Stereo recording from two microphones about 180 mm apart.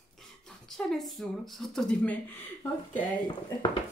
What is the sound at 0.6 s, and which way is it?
Speech, centre (ahead or behind).